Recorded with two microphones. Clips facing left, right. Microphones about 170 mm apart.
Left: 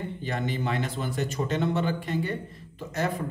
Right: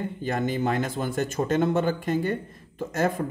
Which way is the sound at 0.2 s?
45° right (ahead or behind).